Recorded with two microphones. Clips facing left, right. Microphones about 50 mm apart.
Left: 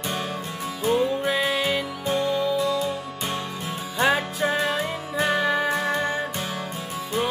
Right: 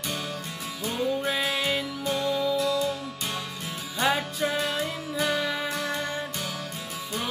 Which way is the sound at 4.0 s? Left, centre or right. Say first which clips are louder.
Left 4 dB; left.